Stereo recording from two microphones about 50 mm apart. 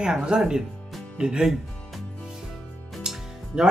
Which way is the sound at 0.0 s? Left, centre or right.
Centre.